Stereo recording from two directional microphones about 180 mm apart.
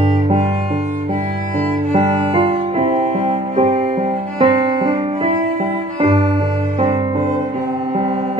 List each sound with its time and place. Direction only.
2.0 s music: 30° right (ahead or behind)